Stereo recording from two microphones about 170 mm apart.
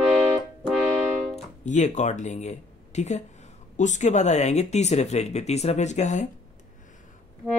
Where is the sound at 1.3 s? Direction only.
45° left (ahead or behind).